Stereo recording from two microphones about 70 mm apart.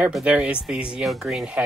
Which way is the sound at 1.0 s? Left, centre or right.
Centre.